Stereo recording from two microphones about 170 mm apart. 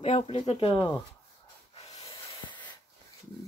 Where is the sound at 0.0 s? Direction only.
35° left (ahead or behind).